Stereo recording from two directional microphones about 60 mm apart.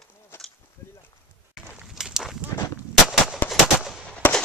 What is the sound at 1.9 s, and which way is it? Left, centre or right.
Walk, centre.